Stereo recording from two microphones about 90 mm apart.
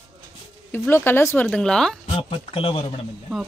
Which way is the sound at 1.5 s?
10° left (ahead or behind).